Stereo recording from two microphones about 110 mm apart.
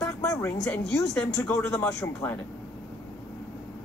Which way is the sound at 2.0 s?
25° left (ahead or behind).